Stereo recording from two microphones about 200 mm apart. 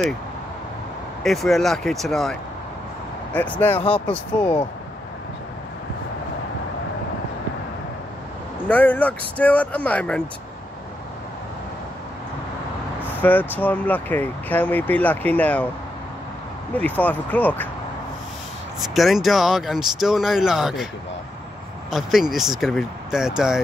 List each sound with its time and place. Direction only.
1.2 s speech: centre (ahead or behind)
3.5 s speech: 5° left (ahead or behind)
8.6 s speech: 5° left (ahead or behind)
13.2 s speech: 10° left (ahead or behind)
16.7 s speech: 10° left (ahead or behind)
18.9 s speech: centre (ahead or behind)
21.9 s speech: centre (ahead or behind)